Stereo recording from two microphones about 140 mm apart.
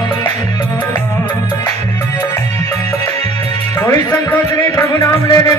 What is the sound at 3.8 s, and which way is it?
Music, 20° left (ahead or behind).